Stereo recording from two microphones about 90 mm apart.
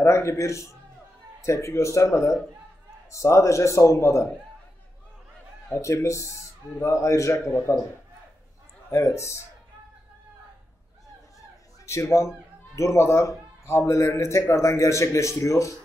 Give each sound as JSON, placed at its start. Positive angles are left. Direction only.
{"t": 0.0, "sound": "a man's voice", "side_deg": 30}
{"t": 5.7, "sound": "a man's voice", "side_deg": 35}
{"t": 8.9, "sound": "a man's voice", "side_deg": 30}
{"t": 11.8, "sound": "a man's voice", "side_deg": 30}